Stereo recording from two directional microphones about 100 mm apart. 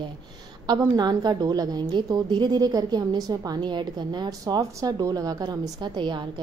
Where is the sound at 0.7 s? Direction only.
40° right (ahead or behind).